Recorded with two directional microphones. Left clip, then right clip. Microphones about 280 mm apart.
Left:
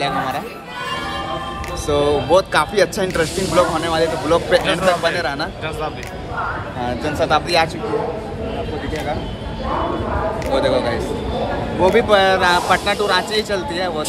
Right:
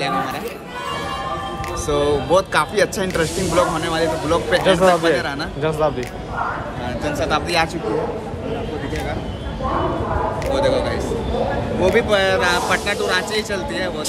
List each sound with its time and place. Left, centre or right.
0.0 s chatter: centre
1.9 s speech: centre
5.6 s speech: right
7.2 s speech: centre
10.5 s speech: centre